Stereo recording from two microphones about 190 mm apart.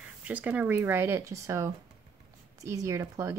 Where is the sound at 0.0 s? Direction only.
10° right (ahead or behind).